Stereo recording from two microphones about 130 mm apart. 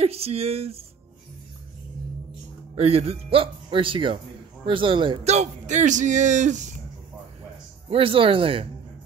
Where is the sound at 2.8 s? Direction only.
50° right (ahead or behind).